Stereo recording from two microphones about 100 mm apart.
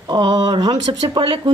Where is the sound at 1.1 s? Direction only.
60° right (ahead or behind).